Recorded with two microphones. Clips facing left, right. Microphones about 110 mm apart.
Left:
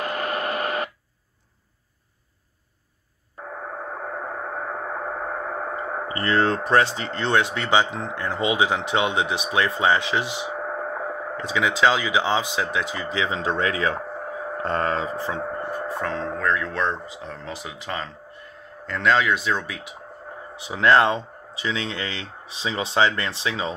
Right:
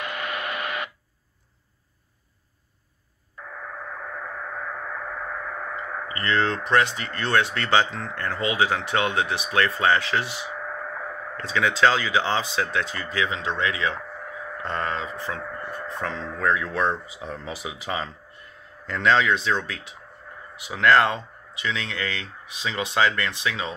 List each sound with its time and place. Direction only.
0.0 s radio: 40° left (ahead or behind)
3.3 s gong: 40° left (ahead or behind); by 10.6 s 20° left (ahead or behind)
10.6 s radio: 40° left (ahead or behind)
11.3 s speech: 15° left (ahead or behind)
13.4 s speech: 40° left (ahead or behind)
16.3 s speech: 5° right (ahead or behind); by 20.0 s 10° left (ahead or behind)
20.5 s speech: 25° left (ahead or behind)